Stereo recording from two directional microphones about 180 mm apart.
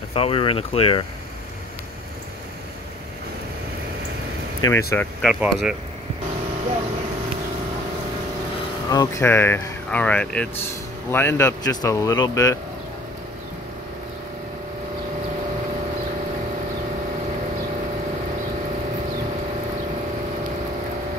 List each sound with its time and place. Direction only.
0.1 s speech: 30° left (ahead or behind)
4.6 s speech: 20° left (ahead or behind)
4.9 s speech: 5° left (ahead or behind)
8.9 s speech: 20° left (ahead or behind)